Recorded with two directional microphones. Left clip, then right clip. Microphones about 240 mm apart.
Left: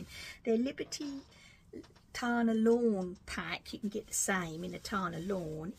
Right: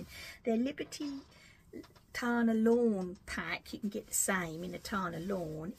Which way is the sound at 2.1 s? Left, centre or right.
Centre.